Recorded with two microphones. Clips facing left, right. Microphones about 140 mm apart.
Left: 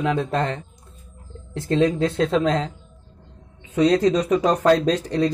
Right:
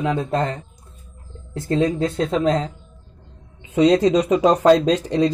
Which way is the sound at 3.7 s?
20° right (ahead or behind).